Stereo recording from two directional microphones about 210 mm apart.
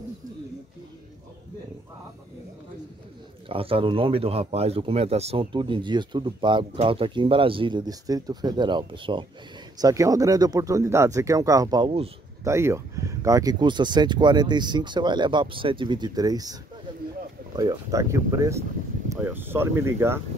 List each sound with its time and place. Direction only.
3.4 s a man's voice: 25° right (ahead or behind)
12.4 s a man's voice: 15° right (ahead or behind)
17.6 s speech: 15° right (ahead or behind)